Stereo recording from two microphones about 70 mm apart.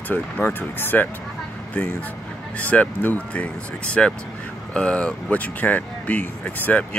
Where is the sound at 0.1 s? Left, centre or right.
Left.